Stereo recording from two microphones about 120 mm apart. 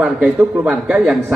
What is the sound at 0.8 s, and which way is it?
Speech, 5° right (ahead or behind).